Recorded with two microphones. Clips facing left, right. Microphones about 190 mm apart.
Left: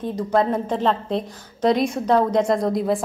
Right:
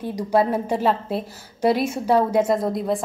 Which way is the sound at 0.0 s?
10° right (ahead or behind).